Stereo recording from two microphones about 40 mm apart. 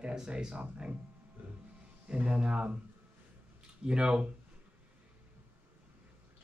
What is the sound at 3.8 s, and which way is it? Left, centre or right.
Speech, centre.